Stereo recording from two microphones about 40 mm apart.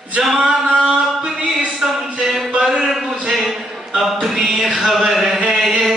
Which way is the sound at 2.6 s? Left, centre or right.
Centre.